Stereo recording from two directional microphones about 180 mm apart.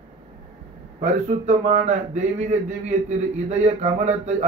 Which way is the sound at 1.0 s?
40° right (ahead or behind).